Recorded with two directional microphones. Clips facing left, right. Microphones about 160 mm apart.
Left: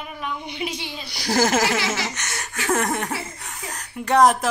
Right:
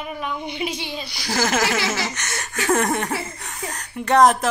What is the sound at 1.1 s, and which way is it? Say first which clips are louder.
Speech: left 3 dB; 45° left (ahead or behind).